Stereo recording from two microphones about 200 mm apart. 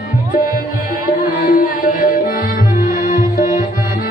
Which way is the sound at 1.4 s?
45° left (ahead or behind).